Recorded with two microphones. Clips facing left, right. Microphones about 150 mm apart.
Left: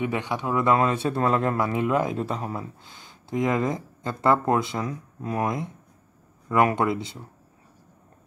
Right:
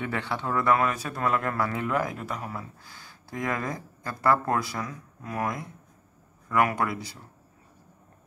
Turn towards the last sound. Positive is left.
turn(degrees=25)  # may be behind; listen again after turning